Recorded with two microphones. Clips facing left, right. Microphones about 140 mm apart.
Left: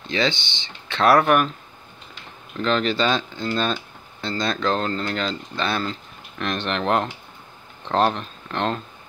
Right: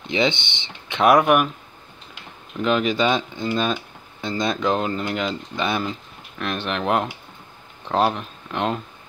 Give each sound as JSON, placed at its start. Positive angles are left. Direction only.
{"t": 0.1, "sound": "speech", "side_deg": -20}
{"t": 2.5, "sound": "speech", "side_deg": -10}